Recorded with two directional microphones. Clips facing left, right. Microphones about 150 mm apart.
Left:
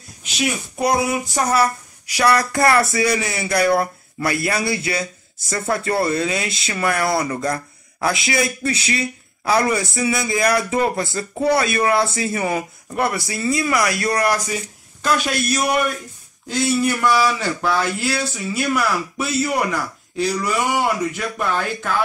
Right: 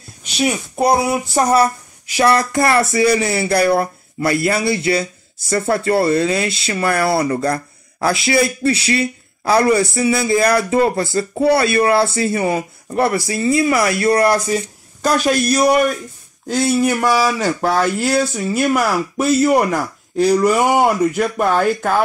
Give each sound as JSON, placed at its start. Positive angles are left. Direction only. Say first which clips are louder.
{"t": 0.5, "sound": "speech", "louder": "right 4 dB", "side_deg": -30}